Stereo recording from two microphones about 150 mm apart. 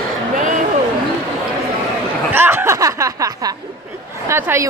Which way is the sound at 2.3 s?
15° right (ahead or behind).